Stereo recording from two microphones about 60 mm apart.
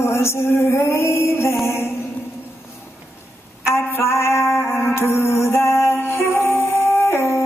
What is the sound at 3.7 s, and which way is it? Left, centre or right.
Music, left.